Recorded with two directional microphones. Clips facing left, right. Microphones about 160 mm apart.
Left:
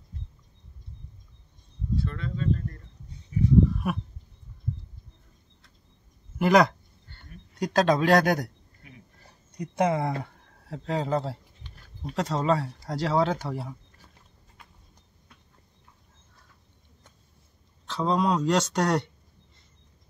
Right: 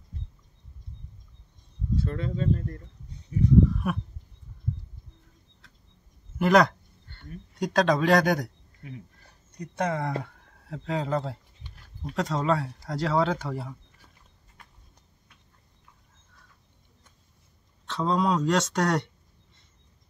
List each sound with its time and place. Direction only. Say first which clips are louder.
2.0 s speech: right 2 dB; 35° right (ahead or behind)
3.7 s a sound: even; 5° left (ahead or behind)
6.3 s speech: even; 5° left (ahead or behind)
9.6 s speech: left 4 dB; 10° left (ahead or behind)
17.8 s speech: even; centre (ahead or behind)